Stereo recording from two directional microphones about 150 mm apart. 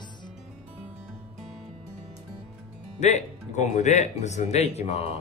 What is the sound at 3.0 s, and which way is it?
Speech, 50° left (ahead or behind).